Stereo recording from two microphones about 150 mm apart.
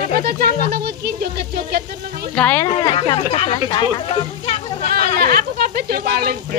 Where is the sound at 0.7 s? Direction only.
90° right.